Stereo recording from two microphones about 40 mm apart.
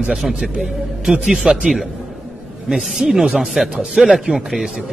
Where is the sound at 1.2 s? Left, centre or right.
Centre.